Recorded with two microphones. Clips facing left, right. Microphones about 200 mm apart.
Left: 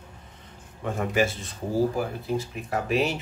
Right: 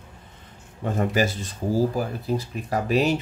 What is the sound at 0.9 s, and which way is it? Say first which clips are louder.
Speech: right 2 dB; 35° right (ahead or behind).